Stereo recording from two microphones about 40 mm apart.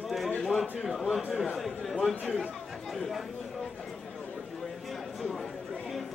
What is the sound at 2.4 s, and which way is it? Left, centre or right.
Chatter, centre.